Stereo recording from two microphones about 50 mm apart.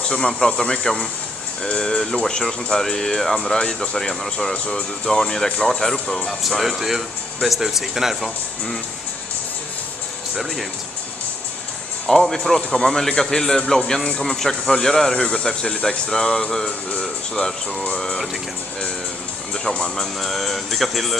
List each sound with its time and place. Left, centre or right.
0.1 s speech: centre
12.1 s speech: centre
19.7 s speech: centre
20.2 s speech: centre